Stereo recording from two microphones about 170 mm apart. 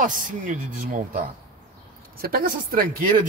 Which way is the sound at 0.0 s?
50° right (ahead or behind).